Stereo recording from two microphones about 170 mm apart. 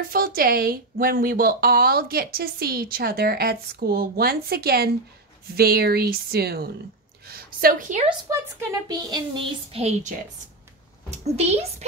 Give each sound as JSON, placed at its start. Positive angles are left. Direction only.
{"t": 0.1, "sound": "a woman's voice", "side_deg": -55}
{"t": 7.2, "sound": "a sound", "side_deg": -55}
{"t": 8.3, "sound": "a woman's voice", "side_deg": -20}